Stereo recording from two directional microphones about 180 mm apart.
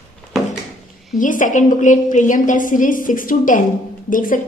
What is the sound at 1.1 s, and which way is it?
A woman's voice, 45° left (ahead or behind).